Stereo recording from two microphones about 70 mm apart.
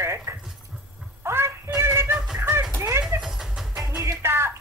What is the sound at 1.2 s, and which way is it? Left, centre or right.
Child singing, right.